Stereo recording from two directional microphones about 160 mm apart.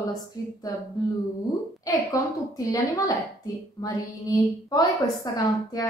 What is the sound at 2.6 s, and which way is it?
A woman's voice, 20° left (ahead or behind).